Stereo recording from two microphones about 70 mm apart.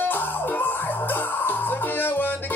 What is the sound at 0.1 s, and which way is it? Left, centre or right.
Music, left.